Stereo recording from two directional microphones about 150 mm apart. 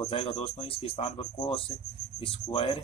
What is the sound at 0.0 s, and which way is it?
Speech, 35° left (ahead or behind).